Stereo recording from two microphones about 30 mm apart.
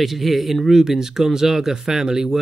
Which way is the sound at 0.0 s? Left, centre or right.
Centre.